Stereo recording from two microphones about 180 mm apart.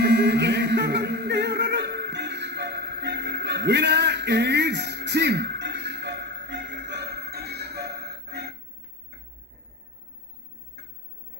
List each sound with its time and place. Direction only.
0.0 s music: 65° right (ahead or behind)